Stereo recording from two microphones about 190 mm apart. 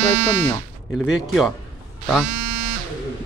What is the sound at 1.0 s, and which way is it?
Speech, centre (ahead or behind).